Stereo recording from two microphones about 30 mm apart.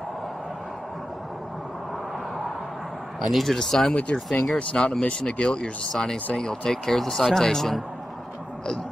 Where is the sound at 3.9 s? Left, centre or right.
Left.